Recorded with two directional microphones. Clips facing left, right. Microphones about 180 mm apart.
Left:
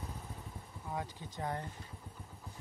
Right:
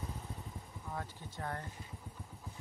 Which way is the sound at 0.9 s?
15° left (ahead or behind).